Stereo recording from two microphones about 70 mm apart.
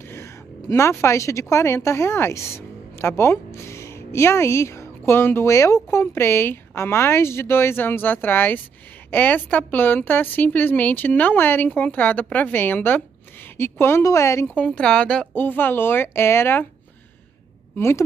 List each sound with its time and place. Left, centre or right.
0.1 s a woman's voice: left
5.5 s a woman's voice: left
14.0 s a woman's voice: left
14.5 s a woman's voice: centre
15.3 s speech: left
17.7 s speech: left